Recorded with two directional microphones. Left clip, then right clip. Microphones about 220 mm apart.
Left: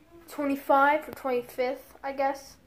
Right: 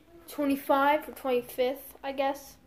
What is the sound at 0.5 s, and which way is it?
Speech, 5° right (ahead or behind).